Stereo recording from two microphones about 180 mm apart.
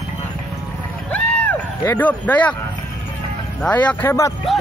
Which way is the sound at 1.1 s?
5° left (ahead or behind).